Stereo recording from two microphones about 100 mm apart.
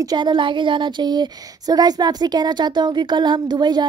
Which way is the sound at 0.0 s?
45° right (ahead or behind).